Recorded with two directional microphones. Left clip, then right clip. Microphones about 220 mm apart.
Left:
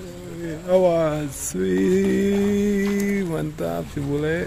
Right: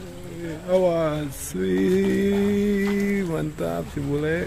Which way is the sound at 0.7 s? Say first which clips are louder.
Left 3 dB; 10° left (ahead or behind).